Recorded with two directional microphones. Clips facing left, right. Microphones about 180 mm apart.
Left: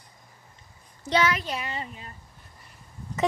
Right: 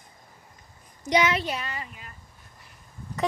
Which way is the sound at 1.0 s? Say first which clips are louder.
Right 1 dB; 15° right (ahead or behind).